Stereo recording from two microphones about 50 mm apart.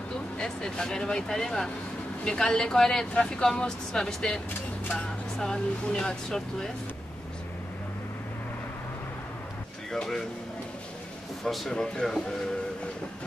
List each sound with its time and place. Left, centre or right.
0.4 s speech: centre
9.8 s speech: centre
11.4 s speech: centre